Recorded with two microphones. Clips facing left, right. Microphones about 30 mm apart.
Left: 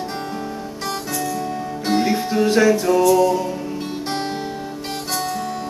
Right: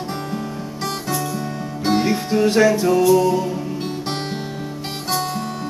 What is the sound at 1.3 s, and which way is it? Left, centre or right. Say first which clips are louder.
Music: left 2 dB; centre.